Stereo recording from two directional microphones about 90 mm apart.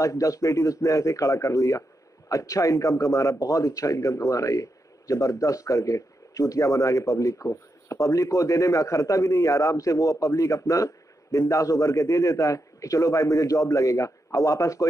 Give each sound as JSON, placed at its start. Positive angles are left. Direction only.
{"t": 0.0, "sound": "a man's voice", "side_deg": 40}